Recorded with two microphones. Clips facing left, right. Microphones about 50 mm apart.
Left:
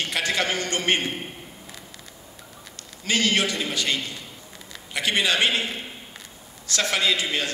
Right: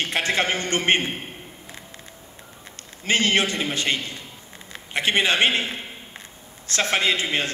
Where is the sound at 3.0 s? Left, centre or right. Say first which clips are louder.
Right 2 dB; right.